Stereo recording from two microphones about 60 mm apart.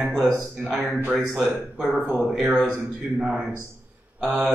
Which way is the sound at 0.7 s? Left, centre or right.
Right.